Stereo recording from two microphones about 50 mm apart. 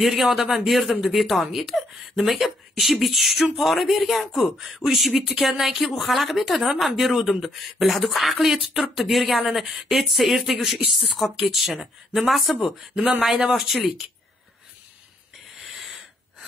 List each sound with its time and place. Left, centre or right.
0.0 s speech: centre
15.6 s wheeze: centre